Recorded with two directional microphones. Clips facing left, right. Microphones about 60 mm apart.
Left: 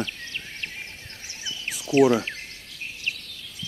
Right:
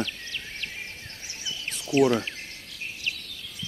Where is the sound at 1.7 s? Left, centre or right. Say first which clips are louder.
Left 3 dB; centre.